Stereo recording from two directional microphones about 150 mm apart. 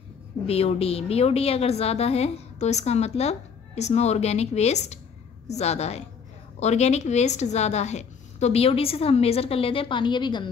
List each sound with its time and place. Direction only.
0.5 s a woman's voice: 40° left (ahead or behind)